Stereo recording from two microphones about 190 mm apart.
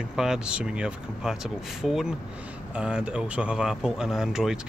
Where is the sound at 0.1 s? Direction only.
5° right (ahead or behind).